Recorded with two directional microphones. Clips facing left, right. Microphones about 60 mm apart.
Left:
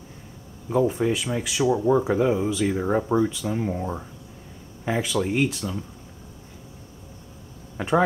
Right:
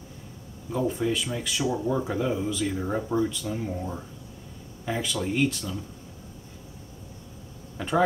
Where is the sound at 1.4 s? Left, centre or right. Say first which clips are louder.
Left 5 dB; centre.